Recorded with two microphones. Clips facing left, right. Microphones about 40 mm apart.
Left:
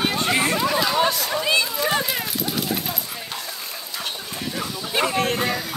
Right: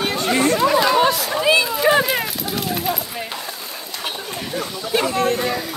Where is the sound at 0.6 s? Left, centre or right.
Centre.